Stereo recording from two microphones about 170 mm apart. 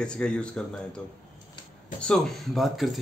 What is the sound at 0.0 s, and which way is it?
Speech, 5° left (ahead or behind).